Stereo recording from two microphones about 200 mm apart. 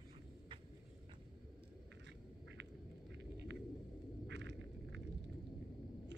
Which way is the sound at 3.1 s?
60° right (ahead or behind).